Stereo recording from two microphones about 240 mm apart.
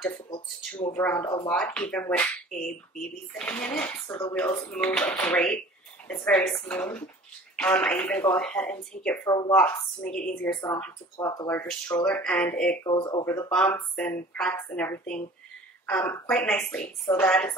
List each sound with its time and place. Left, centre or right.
0.7 s speech: centre
1.5 s speech: centre
10.5 s speech: centre
12.8 s speech: centre
13.2 s speech: centre